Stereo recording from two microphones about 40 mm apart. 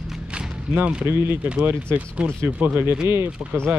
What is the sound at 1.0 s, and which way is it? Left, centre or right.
Speech, right.